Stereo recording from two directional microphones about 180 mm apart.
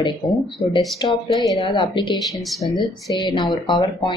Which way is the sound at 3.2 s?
25° left (ahead or behind).